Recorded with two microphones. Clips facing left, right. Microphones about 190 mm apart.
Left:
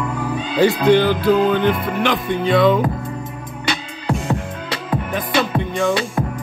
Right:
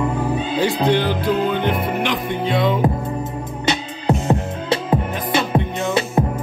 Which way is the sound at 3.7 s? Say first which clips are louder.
Right 3 dB; 25° right (ahead or behind).